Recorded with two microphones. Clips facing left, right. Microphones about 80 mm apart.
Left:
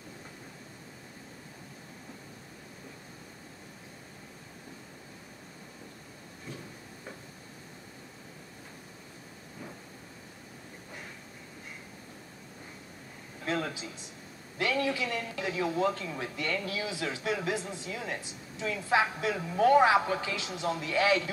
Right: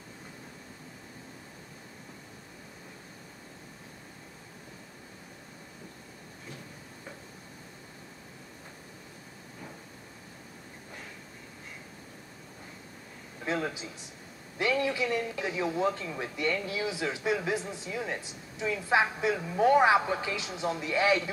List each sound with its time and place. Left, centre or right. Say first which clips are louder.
14.6 s speech: right 1 dB; right